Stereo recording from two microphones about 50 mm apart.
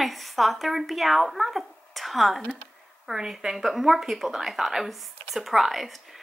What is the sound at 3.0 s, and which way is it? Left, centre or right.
Speech, centre.